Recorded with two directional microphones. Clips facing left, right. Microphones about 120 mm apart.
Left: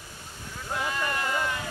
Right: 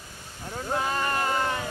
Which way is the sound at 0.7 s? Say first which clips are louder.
Right 3 dB; 40° right (ahead or behind).